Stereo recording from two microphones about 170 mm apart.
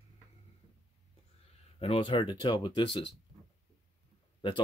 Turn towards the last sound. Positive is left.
turn(degrees=25)  # may be behind; listen again after turning